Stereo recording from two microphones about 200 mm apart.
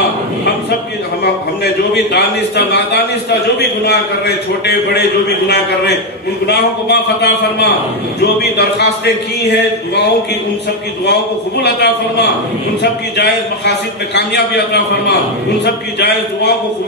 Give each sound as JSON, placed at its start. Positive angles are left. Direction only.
{"t": 2.1, "sound": "a man's voice", "side_deg": 55}
{"t": 5.5, "sound": "a man's voice", "side_deg": 55}
{"t": 11.6, "sound": "a man's voice", "side_deg": 55}
{"t": 14.1, "sound": "a man's voice", "side_deg": 55}